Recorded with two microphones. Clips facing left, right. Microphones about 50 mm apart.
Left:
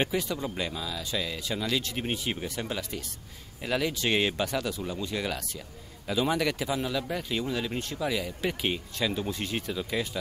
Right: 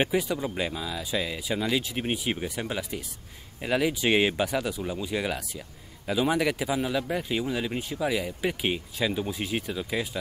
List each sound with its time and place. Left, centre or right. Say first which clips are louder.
0.0 s speech: right 3 dB; centre